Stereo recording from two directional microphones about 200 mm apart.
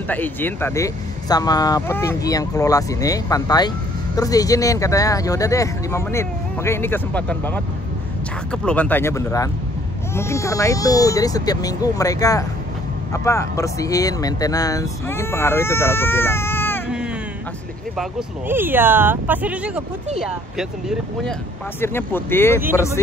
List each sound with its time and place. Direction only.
0.1 s speech: 10° left (ahead or behind)
18.5 s speech: 10° right (ahead or behind)
21.8 s speech: 10° left (ahead or behind)